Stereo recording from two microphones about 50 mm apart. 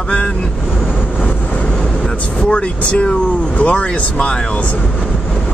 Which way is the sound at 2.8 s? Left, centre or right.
Left.